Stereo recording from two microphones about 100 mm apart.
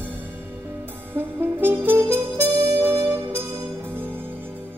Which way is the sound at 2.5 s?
30° right (ahead or behind).